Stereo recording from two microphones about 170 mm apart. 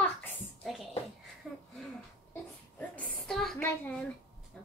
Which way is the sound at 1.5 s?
Centre (ahead or behind).